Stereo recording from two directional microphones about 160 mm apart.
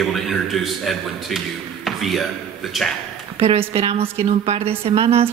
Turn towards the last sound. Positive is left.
turn(degrees=-40)  # may be behind; listen again after turning